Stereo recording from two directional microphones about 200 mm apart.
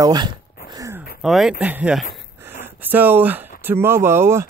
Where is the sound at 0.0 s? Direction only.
20° right (ahead or behind).